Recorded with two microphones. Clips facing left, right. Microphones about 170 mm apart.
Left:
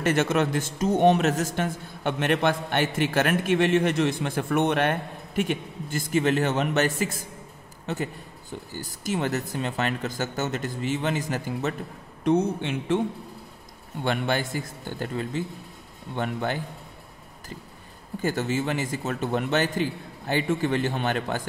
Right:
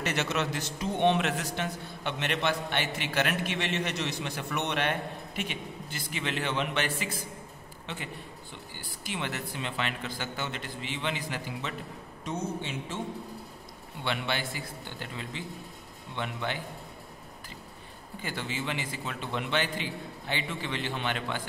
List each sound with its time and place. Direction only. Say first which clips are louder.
0.0 s a man's voice: left 8 dB; 50° left (ahead or behind)
12.3 s speech: left 11 dB; 60° left (ahead or behind)
14.0 s a man's voice: left 6 dB; 45° left (ahead or behind)
18.2 s a man's voice: left 9 dB; 45° left (ahead or behind)